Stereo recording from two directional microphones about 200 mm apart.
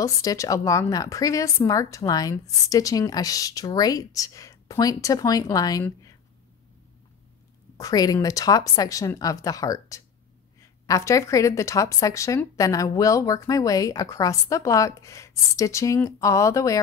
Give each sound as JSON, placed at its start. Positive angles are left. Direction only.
{"t": 0.0, "sound": "speech", "side_deg": 15}
{"t": 7.7, "sound": "speech", "side_deg": 20}